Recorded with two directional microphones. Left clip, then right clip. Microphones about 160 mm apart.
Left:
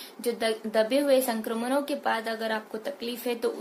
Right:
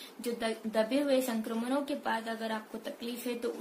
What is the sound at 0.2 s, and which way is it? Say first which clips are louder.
A woman's voice: left 7 dB; 5° left (ahead or behind).